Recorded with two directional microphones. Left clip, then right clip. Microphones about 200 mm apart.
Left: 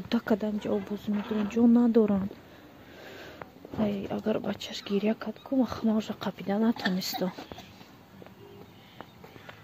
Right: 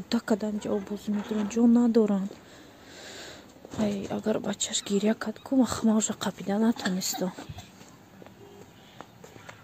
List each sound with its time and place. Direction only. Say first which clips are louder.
0.1 s speech: even; 10° right (ahead or behind)
1.1 s speech: even; 60° right (ahead or behind)
1.5 s speech: even; 5° right (ahead or behind)
3.0 s sniff: right 2 dB; 10° right (ahead or behind)
3.8 s speech: right 1 dB; 15° right (ahead or behind)